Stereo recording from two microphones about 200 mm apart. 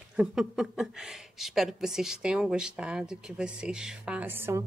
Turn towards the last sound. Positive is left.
turn(degrees=-10)  # may be behind; listen again after turning